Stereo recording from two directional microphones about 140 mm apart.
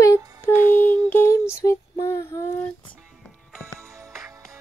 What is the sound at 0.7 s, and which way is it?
Female singing, 15° left (ahead or behind).